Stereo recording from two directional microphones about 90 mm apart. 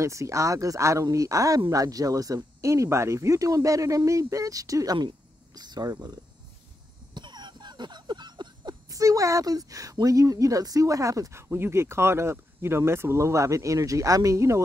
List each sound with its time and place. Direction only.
0.0 s speech: 35° right (ahead or behind)
4.9 s speech: 50° right (ahead or behind)
7.2 s a sound: 55° right (ahead or behind); by 14.6 s 35° right (ahead or behind)